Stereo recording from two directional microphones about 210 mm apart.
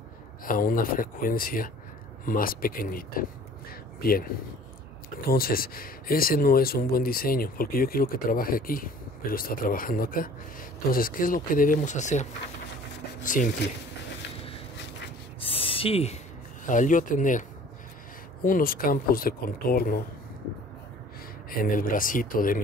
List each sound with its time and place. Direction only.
0.5 s speech: 40° left (ahead or behind)
15.4 s a sound: 25° left (ahead or behind)
16.6 s speech: 40° left (ahead or behind)
21.5 s speech: 40° left (ahead or behind)